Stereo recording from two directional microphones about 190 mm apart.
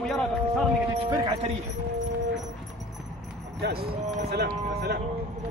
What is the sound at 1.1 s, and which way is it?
Horse, 20° right (ahead or behind).